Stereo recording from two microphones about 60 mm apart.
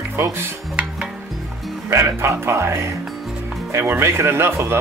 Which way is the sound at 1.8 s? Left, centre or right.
Right.